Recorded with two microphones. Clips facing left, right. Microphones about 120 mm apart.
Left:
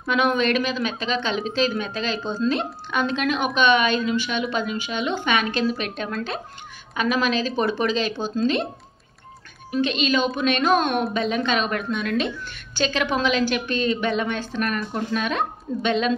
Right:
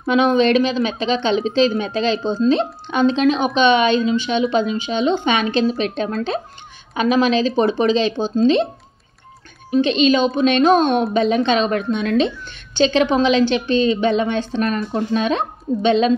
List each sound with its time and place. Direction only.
0.0 s speech: 25° right (ahead or behind)
9.7 s speech: 30° right (ahead or behind)